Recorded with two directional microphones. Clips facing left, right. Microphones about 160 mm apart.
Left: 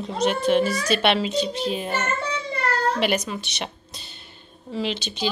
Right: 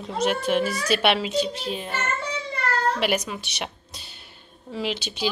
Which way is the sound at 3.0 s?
5° right (ahead or behind).